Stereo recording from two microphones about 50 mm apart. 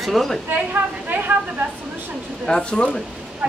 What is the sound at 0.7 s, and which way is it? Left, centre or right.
Speech, right.